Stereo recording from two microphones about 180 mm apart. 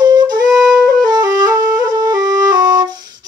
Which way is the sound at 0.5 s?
5° right (ahead or behind).